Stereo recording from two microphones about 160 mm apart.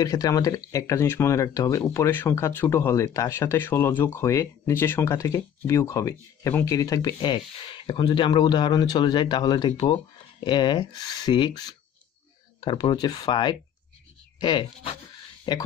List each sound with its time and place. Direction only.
0.0 s speech: 25° left (ahead or behind)